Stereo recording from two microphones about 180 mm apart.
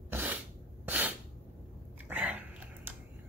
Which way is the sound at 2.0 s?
10° right (ahead or behind).